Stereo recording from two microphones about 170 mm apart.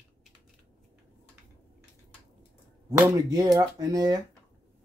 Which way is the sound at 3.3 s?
20° right (ahead or behind).